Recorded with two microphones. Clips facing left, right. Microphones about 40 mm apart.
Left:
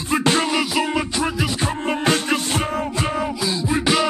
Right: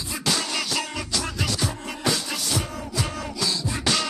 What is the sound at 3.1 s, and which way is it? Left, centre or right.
Music, left.